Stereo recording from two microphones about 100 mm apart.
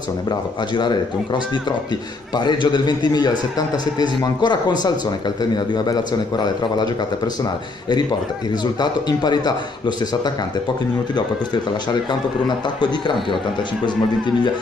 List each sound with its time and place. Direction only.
0.7 s speech: 50° left (ahead or behind)
8.7 s speech: 45° left (ahead or behind)
11.9 s speech: 50° left (ahead or behind)
13.8 s speech: 50° left (ahead or behind)